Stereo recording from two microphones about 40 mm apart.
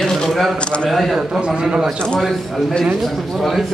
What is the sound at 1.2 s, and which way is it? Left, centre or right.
Speech, right.